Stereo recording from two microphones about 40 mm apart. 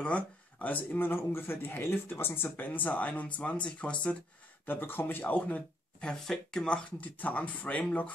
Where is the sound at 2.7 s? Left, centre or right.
Left.